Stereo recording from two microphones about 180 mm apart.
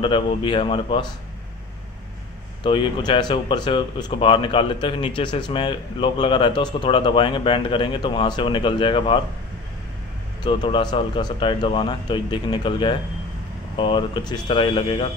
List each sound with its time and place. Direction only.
0.0 s speech: 30° left (ahead or behind)
2.6 s speech: 30° left (ahead or behind)
10.4 s speech: 25° left (ahead or behind)